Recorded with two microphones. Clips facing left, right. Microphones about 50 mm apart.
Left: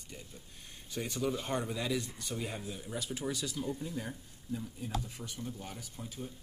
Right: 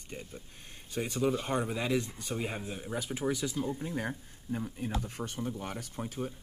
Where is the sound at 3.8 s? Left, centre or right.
Right.